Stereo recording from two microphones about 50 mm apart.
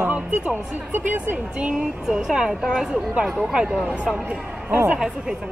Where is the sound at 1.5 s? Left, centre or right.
Right.